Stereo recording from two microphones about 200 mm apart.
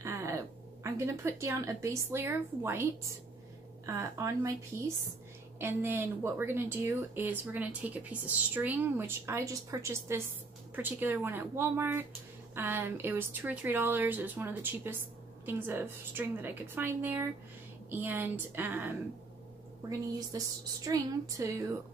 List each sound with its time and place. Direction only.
0.0 s speech: 15° right (ahead or behind)
5.6 s speech: 10° right (ahead or behind)
20.2 s speech: 20° right (ahead or behind)